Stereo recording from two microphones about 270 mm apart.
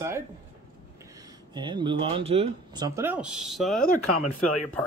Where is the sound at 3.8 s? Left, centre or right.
Left.